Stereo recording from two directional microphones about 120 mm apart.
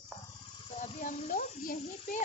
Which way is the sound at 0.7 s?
85° left.